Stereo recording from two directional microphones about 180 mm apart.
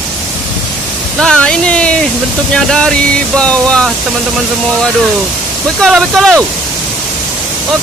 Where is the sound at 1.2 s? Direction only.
5° left (ahead or behind).